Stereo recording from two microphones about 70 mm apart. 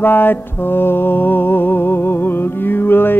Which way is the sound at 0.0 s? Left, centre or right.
Left.